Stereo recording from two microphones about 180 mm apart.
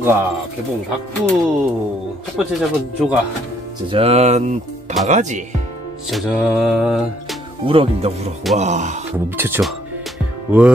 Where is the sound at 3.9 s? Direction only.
35° right (ahead or behind).